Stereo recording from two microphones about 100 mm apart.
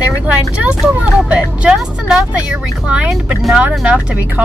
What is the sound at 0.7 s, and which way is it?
Speech, 10° right (ahead or behind).